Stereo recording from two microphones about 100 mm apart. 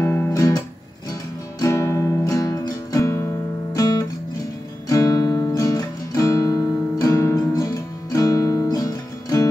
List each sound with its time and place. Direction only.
0.3 s guitar: 35° left (ahead or behind)
1.6 s music: 30° left (ahead or behind)
3.7 s guitar: 40° left (ahead or behind)
4.8 s music: 35° left (ahead or behind)